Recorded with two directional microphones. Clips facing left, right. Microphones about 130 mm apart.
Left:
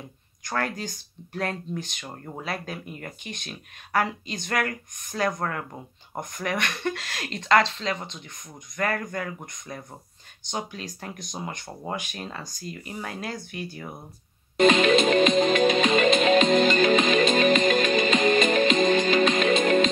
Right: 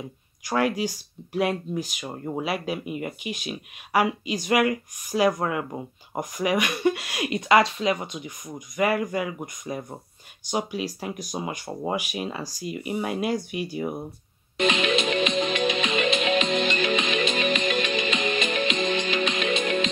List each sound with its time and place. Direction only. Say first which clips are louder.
0.5 s speech: right 6 dB; 10° right (ahead or behind)
14.6 s music: left 5 dB; 45° left (ahead or behind)